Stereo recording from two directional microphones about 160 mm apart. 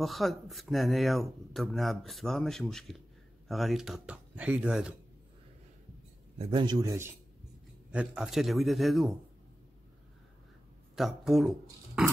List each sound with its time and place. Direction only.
0.0 s speech: centre (ahead or behind)
6.3 s a man's voice: 35° right (ahead or behind)
7.9 s speech: 5° right (ahead or behind)
11.0 s speech: centre (ahead or behind)